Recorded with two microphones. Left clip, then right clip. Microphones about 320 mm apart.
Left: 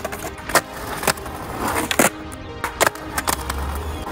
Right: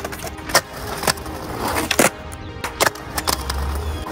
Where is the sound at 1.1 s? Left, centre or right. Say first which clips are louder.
Even; centre.